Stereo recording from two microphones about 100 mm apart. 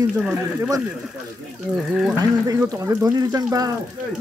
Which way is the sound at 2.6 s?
30° right (ahead or behind).